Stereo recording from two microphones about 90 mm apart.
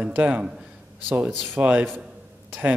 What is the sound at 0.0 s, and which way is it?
Speech, 15° right (ahead or behind).